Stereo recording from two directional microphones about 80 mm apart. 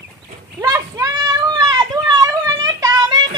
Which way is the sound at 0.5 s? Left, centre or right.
Right.